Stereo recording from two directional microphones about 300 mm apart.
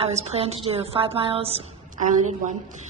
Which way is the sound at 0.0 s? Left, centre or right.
Centre.